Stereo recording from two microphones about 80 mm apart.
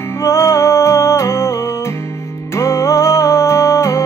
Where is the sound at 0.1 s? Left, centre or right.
Left.